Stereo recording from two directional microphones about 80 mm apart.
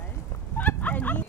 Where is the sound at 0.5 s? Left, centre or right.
Left.